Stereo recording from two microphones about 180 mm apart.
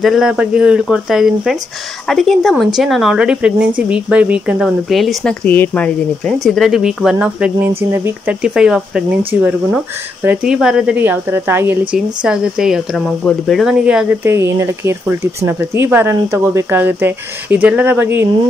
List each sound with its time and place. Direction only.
0.0 s speech: centre (ahead or behind)